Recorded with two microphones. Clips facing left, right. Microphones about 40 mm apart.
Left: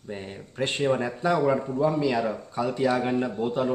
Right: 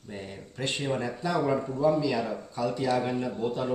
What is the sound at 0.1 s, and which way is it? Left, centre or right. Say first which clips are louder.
A man's voice: left 3 dB; left.